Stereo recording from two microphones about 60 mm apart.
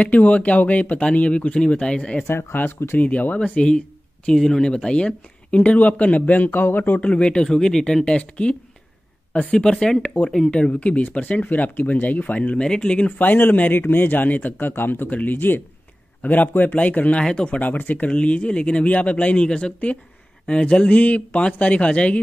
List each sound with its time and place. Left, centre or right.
0.0 s speech: left
2.2 s speech: left
3.0 s speech: left
13.2 s speech: left